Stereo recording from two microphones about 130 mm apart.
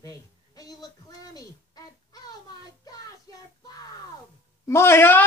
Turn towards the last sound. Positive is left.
turn(degrees=15)  # may be behind; listen again after turning